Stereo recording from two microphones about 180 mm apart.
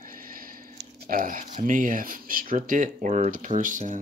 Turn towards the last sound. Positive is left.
turn(degrees=-45)  # may be behind; listen again after turning